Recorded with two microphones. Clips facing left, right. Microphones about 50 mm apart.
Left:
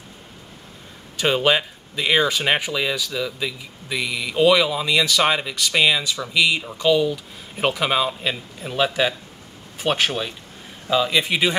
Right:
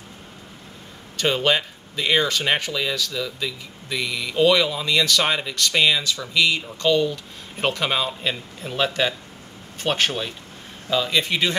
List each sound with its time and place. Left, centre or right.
1.1 s speech: centre